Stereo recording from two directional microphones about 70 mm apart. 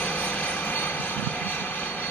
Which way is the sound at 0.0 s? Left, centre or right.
Left.